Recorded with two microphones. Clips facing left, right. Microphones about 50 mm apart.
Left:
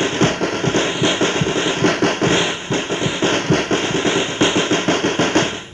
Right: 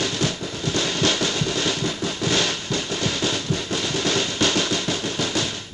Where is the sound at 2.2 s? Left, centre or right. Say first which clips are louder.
Left 6 dB; left.